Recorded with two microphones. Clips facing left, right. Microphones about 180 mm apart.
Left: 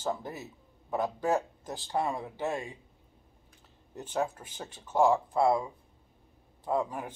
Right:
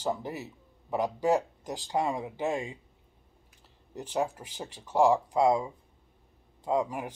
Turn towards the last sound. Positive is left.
turn(degrees=-15)  # may be behind; listen again after turning